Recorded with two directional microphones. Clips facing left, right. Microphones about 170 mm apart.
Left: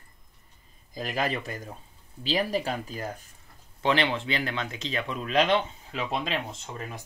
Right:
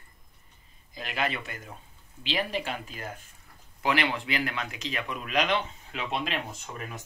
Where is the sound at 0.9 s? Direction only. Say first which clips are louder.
Left 2 dB; 40° left (ahead or behind).